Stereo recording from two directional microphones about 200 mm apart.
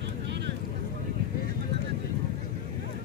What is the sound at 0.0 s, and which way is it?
Vehicle, 60° right (ahead or behind).